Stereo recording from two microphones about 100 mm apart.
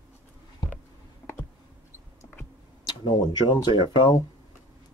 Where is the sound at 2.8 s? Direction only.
45° left (ahead or behind).